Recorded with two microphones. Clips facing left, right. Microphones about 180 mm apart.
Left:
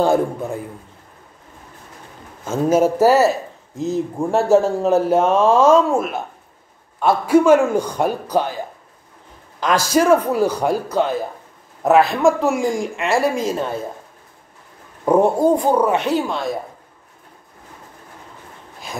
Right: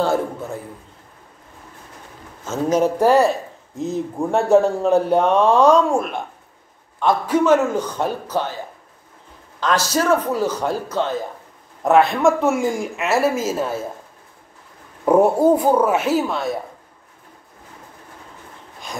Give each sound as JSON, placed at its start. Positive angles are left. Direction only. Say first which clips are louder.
{"t": 0.0, "sound": "a man's voice", "louder": "left 3 dB", "side_deg": 15}
{"t": 2.4, "sound": "a man's voice", "louder": "left 2 dB", "side_deg": 10}
{"t": 9.6, "sound": "a man's voice", "louder": "left 3 dB", "side_deg": 10}
{"t": 11.8, "sound": "speech", "louder": "left 1 dB", "side_deg": 0}
{"t": 15.0, "sound": "speech", "louder": "right 1 dB", "side_deg": -5}